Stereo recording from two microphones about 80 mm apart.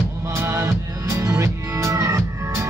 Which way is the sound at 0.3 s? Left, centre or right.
Right.